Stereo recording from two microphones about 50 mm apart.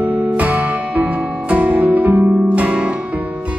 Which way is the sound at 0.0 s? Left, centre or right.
Right.